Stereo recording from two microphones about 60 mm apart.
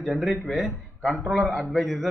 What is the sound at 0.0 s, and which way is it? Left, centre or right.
A man's voice, centre.